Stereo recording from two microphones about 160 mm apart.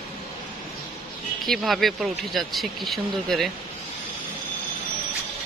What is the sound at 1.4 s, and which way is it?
Speech, centre (ahead or behind).